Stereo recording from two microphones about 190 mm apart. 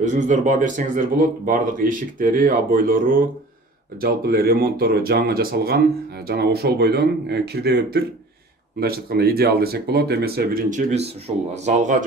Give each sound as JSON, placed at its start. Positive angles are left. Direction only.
{"t": 0.0, "sound": "speech", "side_deg": -40}
{"t": 10.9, "sound": "speech", "side_deg": -35}